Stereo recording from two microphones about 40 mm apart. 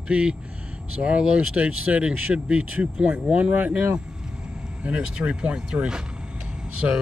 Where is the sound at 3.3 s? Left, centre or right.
Right.